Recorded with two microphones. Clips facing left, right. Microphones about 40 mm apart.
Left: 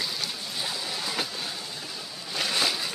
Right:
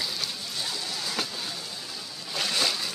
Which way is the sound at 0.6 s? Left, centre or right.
Centre.